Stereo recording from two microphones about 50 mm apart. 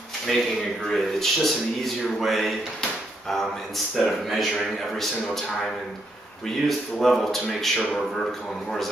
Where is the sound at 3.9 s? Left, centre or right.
Centre.